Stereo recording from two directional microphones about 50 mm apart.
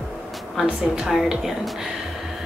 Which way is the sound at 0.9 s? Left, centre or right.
Centre.